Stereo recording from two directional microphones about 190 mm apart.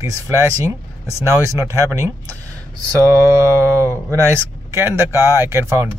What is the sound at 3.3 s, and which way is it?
Speech, 15° right (ahead or behind).